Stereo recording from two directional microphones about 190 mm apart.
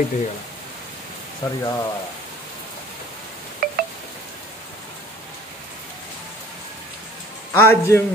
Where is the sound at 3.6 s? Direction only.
50° right (ahead or behind).